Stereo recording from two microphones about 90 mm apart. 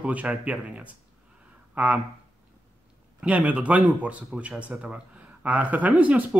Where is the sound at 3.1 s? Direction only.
15° right (ahead or behind).